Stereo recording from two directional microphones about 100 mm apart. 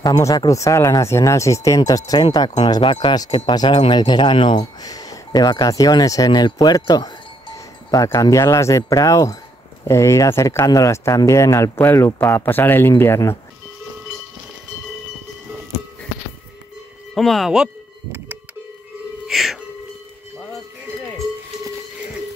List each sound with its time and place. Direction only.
0.0 s speech: 35° left (ahead or behind)
2.6 s speech: 55° left (ahead or behind)
4.8 s speech: 35° left (ahead or behind)
17.1 s speech: centre (ahead or behind)
19.2 s music: centre (ahead or behind)